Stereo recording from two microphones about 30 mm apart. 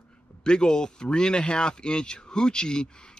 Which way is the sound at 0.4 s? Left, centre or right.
Left.